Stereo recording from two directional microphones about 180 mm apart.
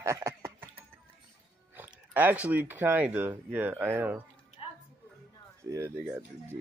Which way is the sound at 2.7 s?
10° right (ahead or behind).